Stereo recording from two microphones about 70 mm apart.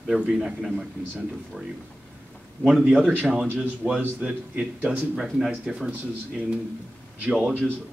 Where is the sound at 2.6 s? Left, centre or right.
Centre.